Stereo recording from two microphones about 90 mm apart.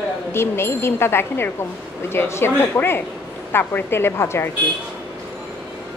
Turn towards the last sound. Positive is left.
turn(degrees=30)  # may be behind; listen again after turning